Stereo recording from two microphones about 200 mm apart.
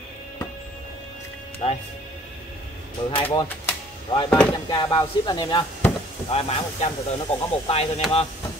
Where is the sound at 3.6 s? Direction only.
20° left (ahead or behind).